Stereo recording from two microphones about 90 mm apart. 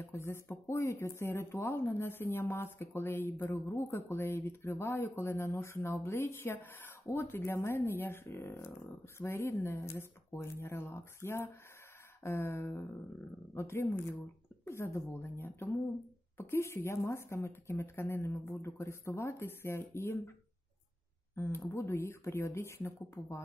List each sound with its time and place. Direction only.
0.0 s speech: 30° left (ahead or behind)
21.4 s speech: 25° left (ahead or behind)